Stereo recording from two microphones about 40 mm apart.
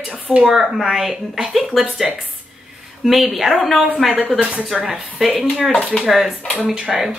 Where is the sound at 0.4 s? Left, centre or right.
Centre.